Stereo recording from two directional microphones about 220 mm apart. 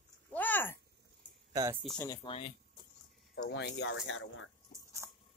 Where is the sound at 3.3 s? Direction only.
60° left (ahead or behind).